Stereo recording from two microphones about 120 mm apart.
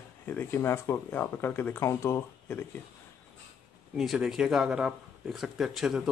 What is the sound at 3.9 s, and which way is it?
Speech, centre (ahead or behind).